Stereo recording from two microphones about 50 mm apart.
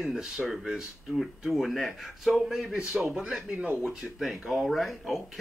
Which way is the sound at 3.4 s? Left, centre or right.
Right.